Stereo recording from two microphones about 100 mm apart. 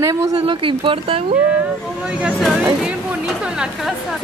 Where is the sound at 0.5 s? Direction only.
60° right (ahead or behind).